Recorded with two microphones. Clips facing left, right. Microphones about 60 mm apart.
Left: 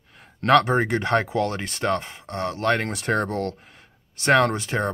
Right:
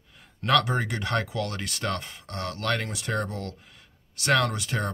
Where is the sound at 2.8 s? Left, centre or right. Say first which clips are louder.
Left 6 dB; left.